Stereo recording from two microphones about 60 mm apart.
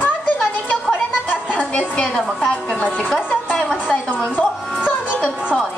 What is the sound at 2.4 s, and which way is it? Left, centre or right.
Speech, centre.